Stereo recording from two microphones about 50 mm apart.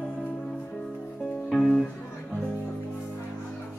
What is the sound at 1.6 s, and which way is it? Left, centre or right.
Music, centre.